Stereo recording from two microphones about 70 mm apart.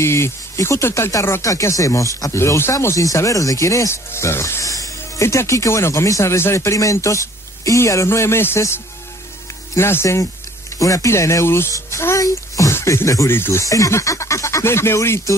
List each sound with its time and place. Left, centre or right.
0.0 s speech: left
1.4 s speech: left
10.8 s speech: left
12.2 s a sound: left
12.8 s speech: left